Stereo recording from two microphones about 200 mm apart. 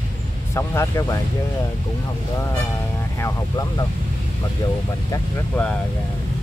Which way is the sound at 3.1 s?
15° left (ahead or behind).